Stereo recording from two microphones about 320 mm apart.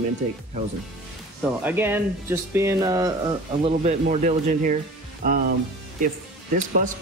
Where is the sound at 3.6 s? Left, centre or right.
Right.